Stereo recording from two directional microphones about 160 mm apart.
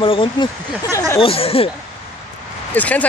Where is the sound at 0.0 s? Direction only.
30° left (ahead or behind).